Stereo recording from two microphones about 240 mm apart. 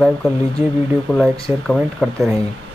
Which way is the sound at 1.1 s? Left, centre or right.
Centre.